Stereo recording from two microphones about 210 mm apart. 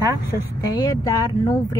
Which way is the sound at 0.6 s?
15° left (ahead or behind).